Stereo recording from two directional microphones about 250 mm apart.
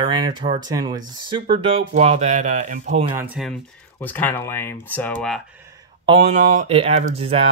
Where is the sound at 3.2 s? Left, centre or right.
Centre.